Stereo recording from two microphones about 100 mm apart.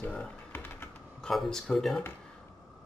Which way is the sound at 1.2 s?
5° left (ahead or behind).